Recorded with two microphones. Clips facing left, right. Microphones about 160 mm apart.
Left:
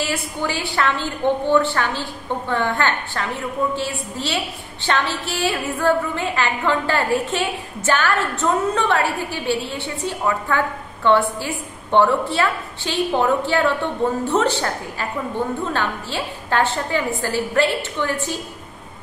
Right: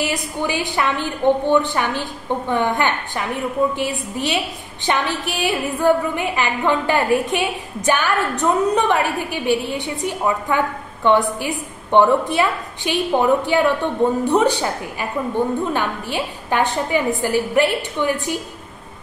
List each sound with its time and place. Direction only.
0.0 s a woman's voice: 15° right (ahead or behind)